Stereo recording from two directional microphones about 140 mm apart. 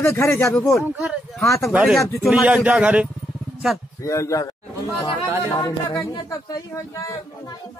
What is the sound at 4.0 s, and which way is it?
Speech, 20° left (ahead or behind).